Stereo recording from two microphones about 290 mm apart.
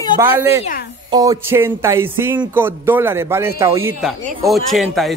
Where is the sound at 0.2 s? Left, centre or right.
Centre.